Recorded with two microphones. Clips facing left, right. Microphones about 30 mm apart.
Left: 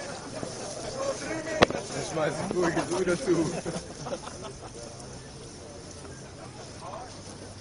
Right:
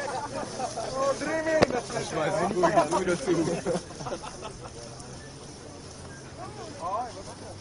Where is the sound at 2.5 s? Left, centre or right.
Centre.